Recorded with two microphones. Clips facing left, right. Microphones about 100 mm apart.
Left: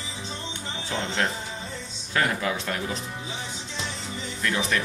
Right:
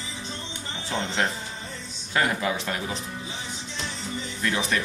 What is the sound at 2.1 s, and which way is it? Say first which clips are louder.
Speech: right 1 dB; 10° right (ahead or behind).